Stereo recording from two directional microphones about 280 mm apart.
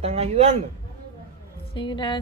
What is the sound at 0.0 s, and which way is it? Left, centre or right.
Speech, right.